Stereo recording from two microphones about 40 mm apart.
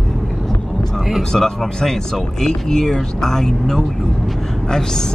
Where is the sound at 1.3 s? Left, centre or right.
Centre.